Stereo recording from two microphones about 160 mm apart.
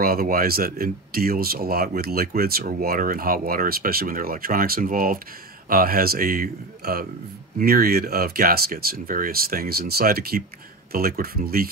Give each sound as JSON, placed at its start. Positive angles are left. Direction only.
{"t": 0.0, "sound": "speech", "side_deg": -70}